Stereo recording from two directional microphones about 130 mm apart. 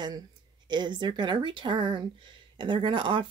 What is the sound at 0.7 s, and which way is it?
Speech, 35° right (ahead or behind).